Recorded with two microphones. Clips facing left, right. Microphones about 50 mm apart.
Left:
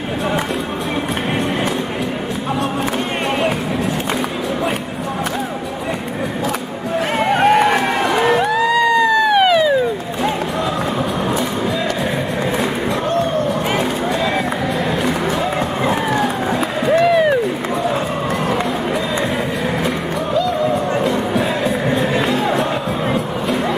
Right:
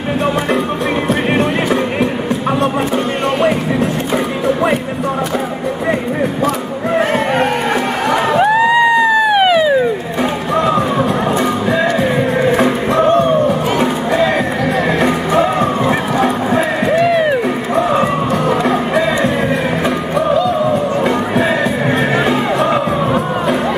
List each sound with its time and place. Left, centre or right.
8.5 s a sound: right
16.2 s run: right
17.0 s music: centre
21.0 s music: right